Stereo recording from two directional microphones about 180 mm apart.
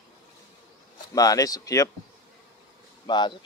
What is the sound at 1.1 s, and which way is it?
Speech, 20° left (ahead or behind).